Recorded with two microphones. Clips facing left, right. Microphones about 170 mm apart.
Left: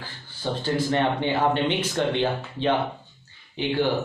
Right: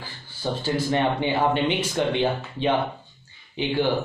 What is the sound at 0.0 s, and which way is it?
Speech, 10° right (ahead or behind).